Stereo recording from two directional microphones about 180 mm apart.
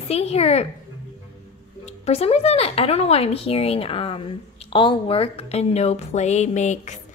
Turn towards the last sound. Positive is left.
turn(degrees=40)  # may be behind; listen again after turning